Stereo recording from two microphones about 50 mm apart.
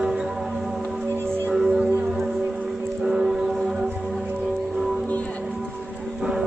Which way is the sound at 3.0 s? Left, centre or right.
Centre.